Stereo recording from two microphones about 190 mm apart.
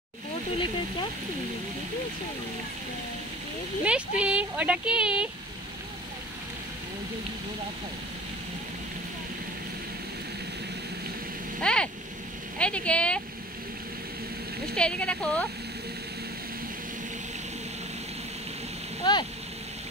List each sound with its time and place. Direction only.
3.8 s speech: 5° right (ahead or behind)
11.6 s speech: 5° left (ahead or behind)
14.8 s speech: 5° left (ahead or behind)
19.0 s speech: 20° left (ahead or behind)